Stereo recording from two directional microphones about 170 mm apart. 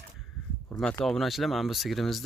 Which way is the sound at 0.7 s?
5° left (ahead or behind).